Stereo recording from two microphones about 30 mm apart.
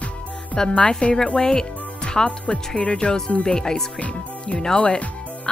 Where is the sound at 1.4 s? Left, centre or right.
Centre.